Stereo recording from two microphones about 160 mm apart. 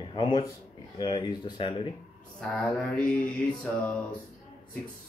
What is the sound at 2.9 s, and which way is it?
Mantra, 5° left (ahead or behind).